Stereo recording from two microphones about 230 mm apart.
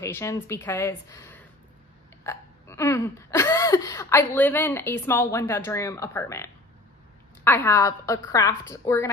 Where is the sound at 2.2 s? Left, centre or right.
Centre.